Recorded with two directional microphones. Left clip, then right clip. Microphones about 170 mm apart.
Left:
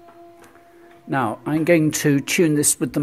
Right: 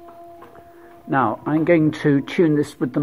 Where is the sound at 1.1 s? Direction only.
40° left (ahead or behind).